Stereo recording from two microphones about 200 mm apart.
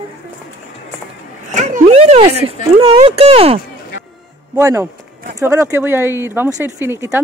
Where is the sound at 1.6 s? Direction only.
30° right (ahead or behind).